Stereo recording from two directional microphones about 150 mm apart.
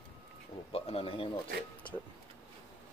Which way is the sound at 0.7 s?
40° left (ahead or behind).